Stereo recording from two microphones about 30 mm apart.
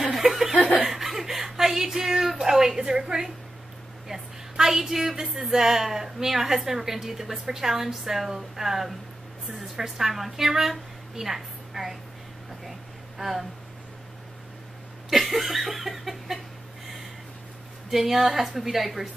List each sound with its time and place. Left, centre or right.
0.0 s chuckle: centre
2.0 s a woman's voice: centre
4.1 s a woman's voice: centre
13.2 s a woman's voice: centre
15.0 s a sound: centre
17.8 s a woman's voice: centre